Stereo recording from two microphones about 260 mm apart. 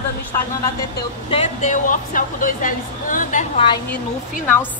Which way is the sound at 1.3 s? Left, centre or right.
Left.